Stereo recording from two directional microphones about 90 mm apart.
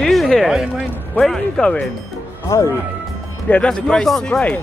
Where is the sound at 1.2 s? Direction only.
5° left (ahead or behind).